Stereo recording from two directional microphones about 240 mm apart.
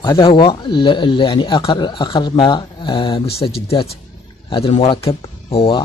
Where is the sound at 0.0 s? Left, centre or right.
Centre.